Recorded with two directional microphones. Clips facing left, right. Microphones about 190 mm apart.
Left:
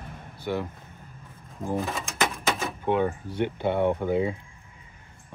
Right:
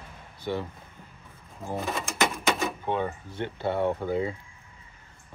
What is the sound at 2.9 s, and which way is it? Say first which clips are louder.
Speech: left 5 dB; 15° left (ahead or behind).